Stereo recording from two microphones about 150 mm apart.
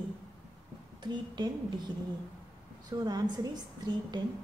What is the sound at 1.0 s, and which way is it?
A woman's voice, 30° right (ahead or behind).